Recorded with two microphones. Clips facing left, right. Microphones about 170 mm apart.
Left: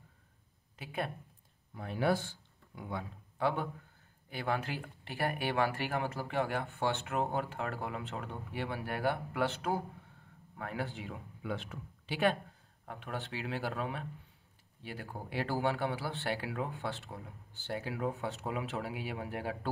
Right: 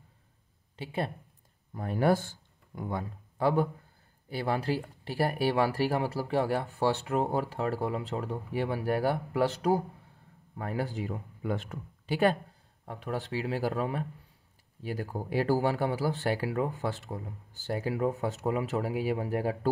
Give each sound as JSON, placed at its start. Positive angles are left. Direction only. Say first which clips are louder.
{"t": 0.7, "sound": "speech", "louder": "right 5 dB", "side_deg": -30}
{"t": 1.7, "sound": "speech", "louder": "right 5 dB", "side_deg": -45}